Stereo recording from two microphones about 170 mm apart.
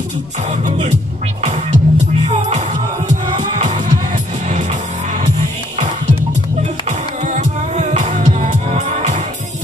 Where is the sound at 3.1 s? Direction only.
45° right (ahead or behind).